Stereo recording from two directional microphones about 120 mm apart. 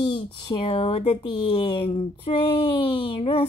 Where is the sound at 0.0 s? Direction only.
40° left (ahead or behind).